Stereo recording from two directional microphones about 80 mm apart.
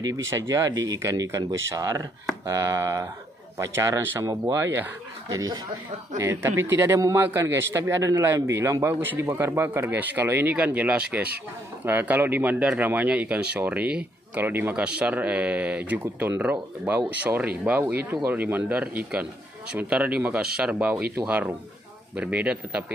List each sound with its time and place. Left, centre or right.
0.0 s a man's voice: right
6.2 s a man's voice: right; by 21.0 s centre
22.1 s speech: centre